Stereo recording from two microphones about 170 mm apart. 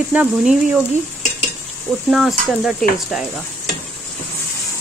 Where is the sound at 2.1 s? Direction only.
Centre (ahead or behind).